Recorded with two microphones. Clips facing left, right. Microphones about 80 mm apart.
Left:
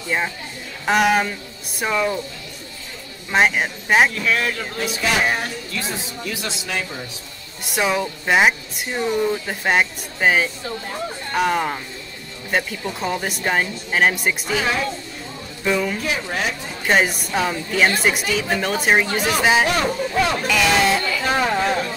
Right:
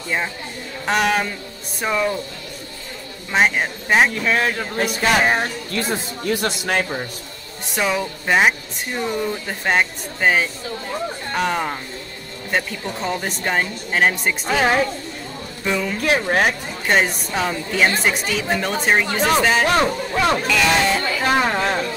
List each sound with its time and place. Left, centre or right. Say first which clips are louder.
0.8 s speech: left 2 dB; centre
3.3 s speech: even; centre
4.1 s speech: right 2 dB; right
4.8 s speech: right 2 dB; right
5.2 s speech: right 3 dB; right
7.6 s speech: left 1 dB; centre
14.5 s speech: right 6 dB; right
15.6 s speech: left 2 dB; centre
16.0 s speech: right 6 dB; right
16.8 s speech: even; centre
21.2 s speech: right 1 dB; right